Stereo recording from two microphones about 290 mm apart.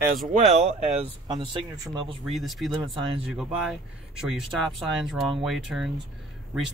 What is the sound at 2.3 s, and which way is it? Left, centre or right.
Speech, centre.